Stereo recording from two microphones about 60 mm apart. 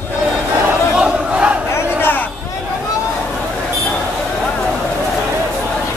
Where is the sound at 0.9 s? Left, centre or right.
Centre.